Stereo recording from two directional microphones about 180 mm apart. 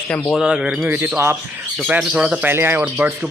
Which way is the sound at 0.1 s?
Centre (ahead or behind).